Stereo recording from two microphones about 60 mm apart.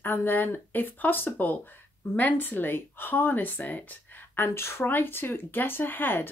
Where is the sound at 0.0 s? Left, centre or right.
Left.